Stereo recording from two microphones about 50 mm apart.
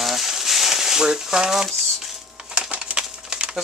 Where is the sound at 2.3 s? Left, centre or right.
Centre.